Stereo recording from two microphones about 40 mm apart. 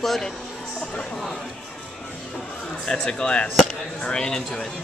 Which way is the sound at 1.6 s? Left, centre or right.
Left.